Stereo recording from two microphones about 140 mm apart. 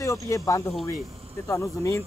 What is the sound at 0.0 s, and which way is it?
Speech, 20° left (ahead or behind).